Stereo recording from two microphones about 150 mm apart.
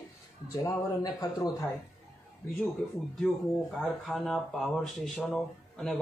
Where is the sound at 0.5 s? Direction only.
25° left (ahead or behind).